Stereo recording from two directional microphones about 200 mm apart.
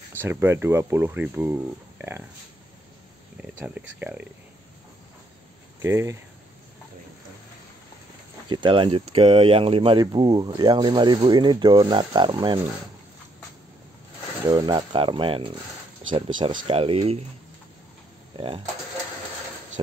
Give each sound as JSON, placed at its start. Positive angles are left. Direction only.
{"t": 0.2, "sound": "speech", "side_deg": -10}
{"t": 3.6, "sound": "speech", "side_deg": -10}
{"t": 5.8, "sound": "speech", "side_deg": -15}
{"t": 8.5, "sound": "speech", "side_deg": -25}
{"t": 14.4, "sound": "speech", "side_deg": -20}
{"t": 18.3, "sound": "speech", "side_deg": -25}